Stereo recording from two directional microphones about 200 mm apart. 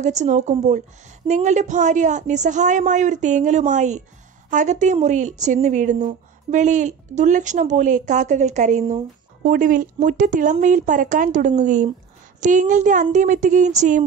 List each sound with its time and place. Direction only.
0.0 s speech: 35° right (ahead or behind)